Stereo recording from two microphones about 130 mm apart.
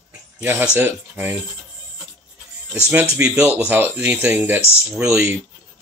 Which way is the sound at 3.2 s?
10° right (ahead or behind).